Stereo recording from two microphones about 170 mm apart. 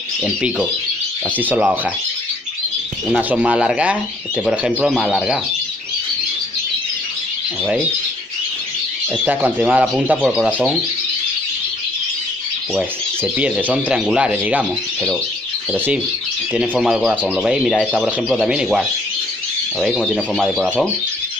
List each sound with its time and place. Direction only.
0.2 s speech: 5° right (ahead or behind)
3.2 s speech: 10° right (ahead or behind)
9.2 s speech: 10° right (ahead or behind)
12.7 s speech: 10° right (ahead or behind)
16.5 s speech: 5° right (ahead or behind)